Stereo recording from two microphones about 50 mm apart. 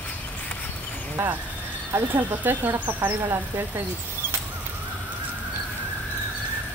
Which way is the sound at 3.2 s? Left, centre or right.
Right.